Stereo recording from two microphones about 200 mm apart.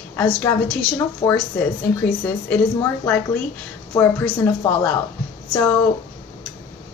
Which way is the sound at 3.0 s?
10° left (ahead or behind).